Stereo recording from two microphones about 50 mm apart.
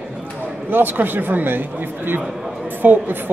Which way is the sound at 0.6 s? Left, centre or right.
Right.